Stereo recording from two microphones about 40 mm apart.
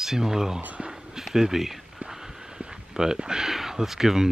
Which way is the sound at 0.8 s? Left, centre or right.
Centre.